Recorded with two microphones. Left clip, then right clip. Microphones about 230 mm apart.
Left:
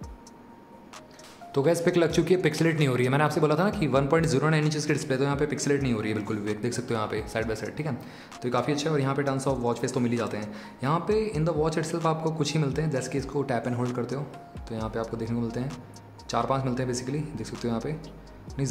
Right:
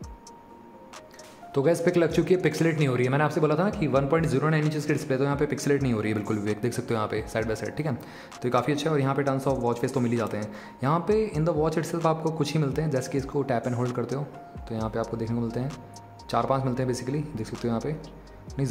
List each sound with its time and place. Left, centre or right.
1.5 s speech: centre